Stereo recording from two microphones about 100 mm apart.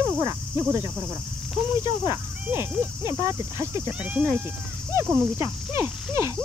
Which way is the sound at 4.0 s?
10° right (ahead or behind).